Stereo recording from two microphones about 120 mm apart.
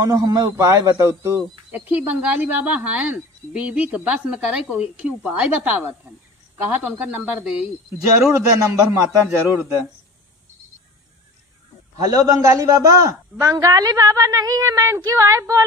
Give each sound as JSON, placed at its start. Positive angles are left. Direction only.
{"t": 0.0, "sound": "a man's voice", "side_deg": -30}
{"t": 1.7, "sound": "speech", "side_deg": -15}
{"t": 8.3, "sound": "a man's voice", "side_deg": -25}
{"t": 12.0, "sound": "a man's voice", "side_deg": -30}